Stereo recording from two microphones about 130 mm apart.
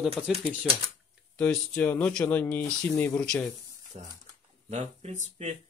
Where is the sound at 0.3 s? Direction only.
Centre (ahead or behind).